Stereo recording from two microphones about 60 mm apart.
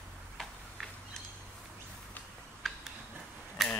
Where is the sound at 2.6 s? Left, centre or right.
Centre.